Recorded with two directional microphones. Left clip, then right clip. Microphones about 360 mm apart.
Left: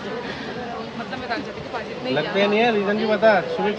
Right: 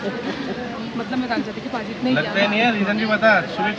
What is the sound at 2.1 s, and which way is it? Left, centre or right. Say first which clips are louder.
Speech: even; left.